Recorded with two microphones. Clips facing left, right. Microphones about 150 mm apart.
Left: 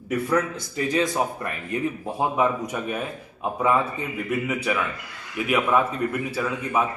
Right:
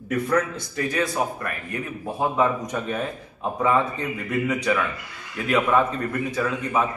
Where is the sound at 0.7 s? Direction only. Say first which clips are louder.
Left 1 dB; 20° left (ahead or behind).